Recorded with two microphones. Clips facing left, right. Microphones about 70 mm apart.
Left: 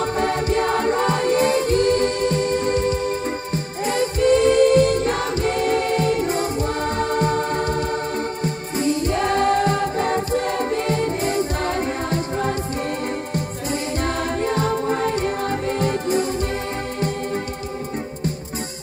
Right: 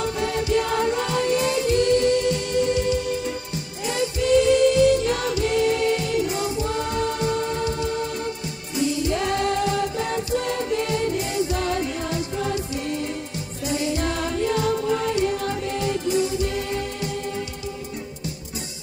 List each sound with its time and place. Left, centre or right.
0.0 s music: left
14.5 s music: left